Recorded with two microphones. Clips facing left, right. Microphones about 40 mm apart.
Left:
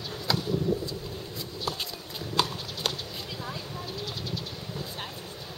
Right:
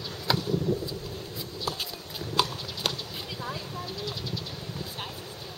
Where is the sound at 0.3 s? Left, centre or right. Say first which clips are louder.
Right 1 dB; centre.